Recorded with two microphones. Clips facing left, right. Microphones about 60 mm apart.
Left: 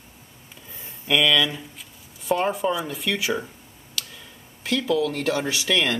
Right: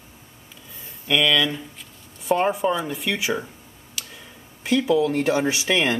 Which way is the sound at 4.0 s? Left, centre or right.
Centre.